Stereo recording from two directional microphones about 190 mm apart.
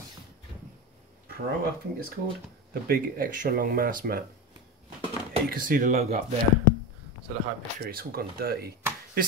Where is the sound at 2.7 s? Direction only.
50° right (ahead or behind).